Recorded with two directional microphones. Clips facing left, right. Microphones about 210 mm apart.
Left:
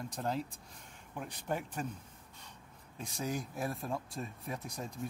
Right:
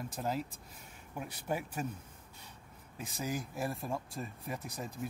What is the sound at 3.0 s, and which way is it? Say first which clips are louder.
Speech: even; 5° right (ahead or behind).